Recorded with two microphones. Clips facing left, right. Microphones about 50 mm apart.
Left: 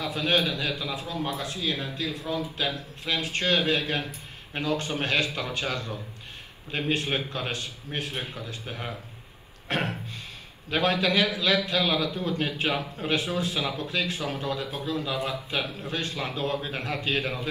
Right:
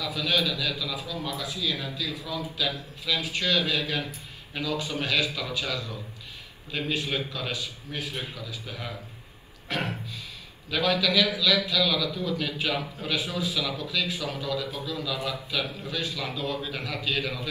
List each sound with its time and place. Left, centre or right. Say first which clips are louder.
0.0 s a man's voice: left 2 dB; left
9.7 s a sound: left 2 dB; left
10.7 s a man's voice: left 1 dB; left
13.1 s a man's voice: left 2 dB; left